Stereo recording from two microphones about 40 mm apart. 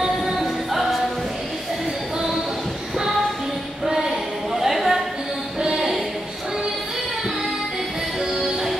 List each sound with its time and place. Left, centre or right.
0.0 s music: centre
3.8 s music: centre
4.6 s a sound: centre
5.6 s music: centre